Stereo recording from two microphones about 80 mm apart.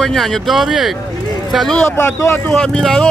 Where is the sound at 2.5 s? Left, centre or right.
Centre.